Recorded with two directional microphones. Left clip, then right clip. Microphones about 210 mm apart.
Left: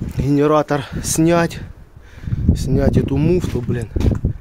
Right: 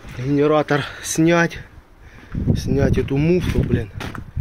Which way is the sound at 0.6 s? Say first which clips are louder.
Even; 10° left (ahead or behind).